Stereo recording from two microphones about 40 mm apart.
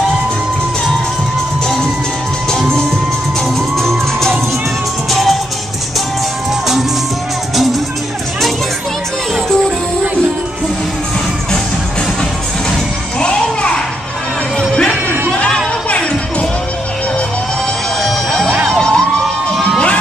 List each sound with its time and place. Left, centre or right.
3.7 s music: centre
13.2 s children playing: left
18.0 s music: centre
18.8 s crowd: left